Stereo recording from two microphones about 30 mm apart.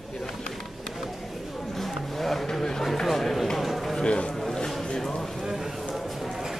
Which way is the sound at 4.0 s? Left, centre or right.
Left.